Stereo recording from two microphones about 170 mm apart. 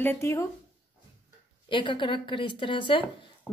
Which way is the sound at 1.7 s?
30° left (ahead or behind).